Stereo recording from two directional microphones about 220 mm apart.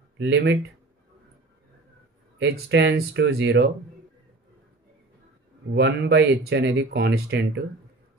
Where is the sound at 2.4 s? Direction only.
50° right (ahead or behind).